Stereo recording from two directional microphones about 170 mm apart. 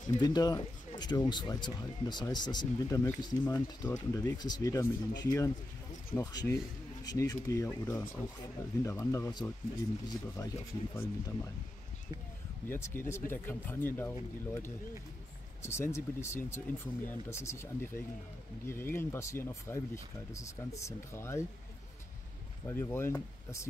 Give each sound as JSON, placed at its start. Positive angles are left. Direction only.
{"t": 0.2, "sound": "speech", "side_deg": 25}
{"t": 12.6, "sound": "speech", "side_deg": 15}
{"t": 22.7, "sound": "speech", "side_deg": 15}